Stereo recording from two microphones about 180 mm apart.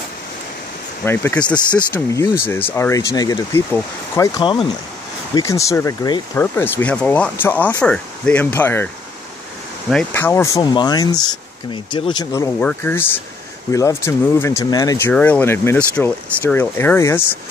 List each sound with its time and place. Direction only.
1.0 s speech: 10° left (ahead or behind)